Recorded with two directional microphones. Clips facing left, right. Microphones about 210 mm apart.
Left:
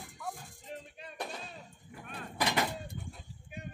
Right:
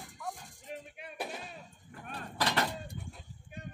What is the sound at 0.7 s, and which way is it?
Music, 10° right (ahead or behind).